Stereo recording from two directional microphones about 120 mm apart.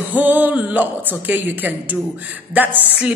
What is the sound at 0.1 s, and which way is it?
A woman's voice, 15° right (ahead or behind).